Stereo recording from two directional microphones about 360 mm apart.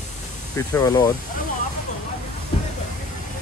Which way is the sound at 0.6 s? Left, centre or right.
Centre.